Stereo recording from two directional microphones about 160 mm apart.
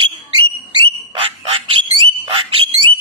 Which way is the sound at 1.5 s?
35° right (ahead or behind).